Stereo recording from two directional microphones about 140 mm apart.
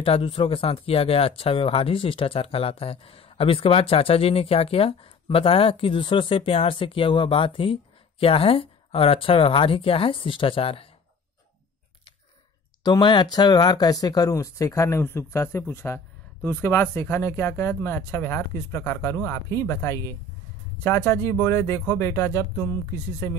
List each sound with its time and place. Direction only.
0.0 s speech: 40° left (ahead or behind)
12.8 s speech: 30° left (ahead or behind)